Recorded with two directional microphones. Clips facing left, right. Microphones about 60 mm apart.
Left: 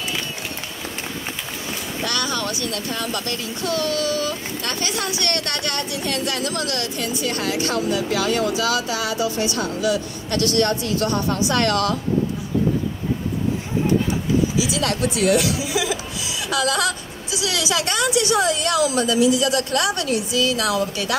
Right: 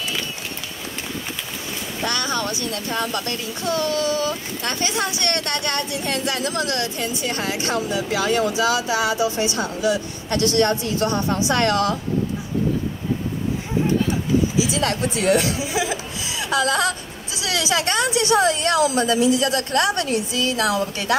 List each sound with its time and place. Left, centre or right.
2.0 s a woman's voice: right
14.6 s speech: right